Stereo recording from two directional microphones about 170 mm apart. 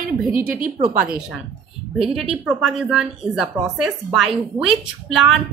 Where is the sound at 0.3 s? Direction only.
50° right (ahead or behind).